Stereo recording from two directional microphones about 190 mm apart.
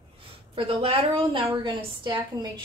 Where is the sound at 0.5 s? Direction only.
30° right (ahead or behind).